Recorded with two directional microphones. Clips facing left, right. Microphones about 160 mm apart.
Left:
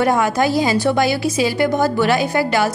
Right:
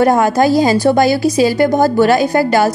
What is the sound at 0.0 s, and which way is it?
A woman's voice, 40° right (ahead or behind).